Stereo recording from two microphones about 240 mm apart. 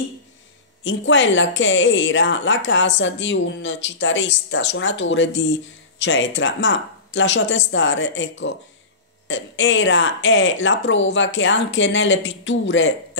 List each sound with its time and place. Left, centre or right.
0.8 s speech: left